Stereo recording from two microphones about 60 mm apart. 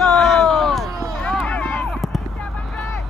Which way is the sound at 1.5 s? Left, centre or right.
Left.